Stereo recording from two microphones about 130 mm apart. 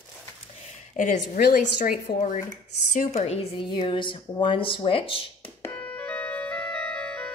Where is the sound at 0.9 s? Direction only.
75° left (ahead or behind); by 2.4 s 90° left.